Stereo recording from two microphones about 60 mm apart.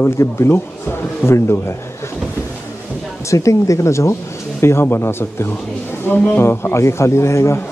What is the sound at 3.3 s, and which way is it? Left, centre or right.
Speech, left.